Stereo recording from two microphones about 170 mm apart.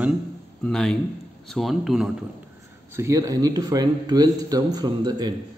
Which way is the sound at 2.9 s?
15° right (ahead or behind).